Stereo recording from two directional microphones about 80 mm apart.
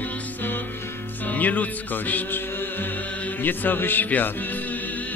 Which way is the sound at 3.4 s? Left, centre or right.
Left.